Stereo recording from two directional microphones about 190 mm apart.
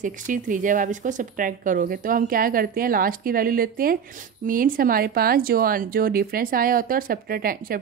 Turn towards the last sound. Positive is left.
turn(degrees=-50)  # may be behind; listen again after turning